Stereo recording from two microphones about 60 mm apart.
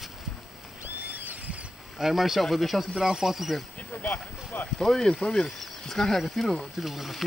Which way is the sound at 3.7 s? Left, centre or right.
Left.